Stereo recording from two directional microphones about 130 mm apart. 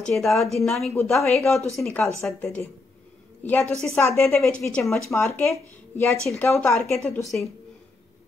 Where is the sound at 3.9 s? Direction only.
20° left (ahead or behind).